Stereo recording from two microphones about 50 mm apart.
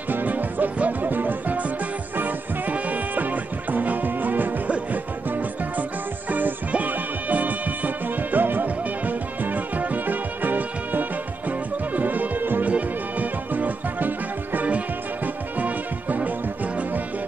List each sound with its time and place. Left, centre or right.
0.1 s music: right
4.6 s music: right